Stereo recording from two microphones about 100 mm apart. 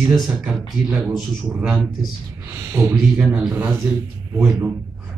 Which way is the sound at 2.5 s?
25° right (ahead or behind).